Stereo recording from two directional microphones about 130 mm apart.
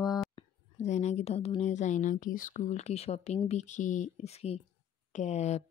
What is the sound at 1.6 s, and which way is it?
A woman's voice, 65° left (ahead or behind).